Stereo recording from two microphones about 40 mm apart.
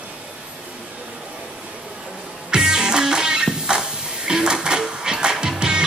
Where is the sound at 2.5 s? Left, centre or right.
Centre.